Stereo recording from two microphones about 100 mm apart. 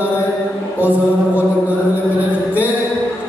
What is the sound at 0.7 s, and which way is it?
Music, 15° right (ahead or behind).